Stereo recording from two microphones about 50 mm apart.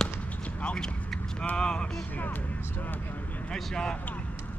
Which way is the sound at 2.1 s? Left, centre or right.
Left.